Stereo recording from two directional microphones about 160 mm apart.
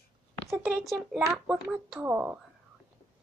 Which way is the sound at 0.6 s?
Centre (ahead or behind).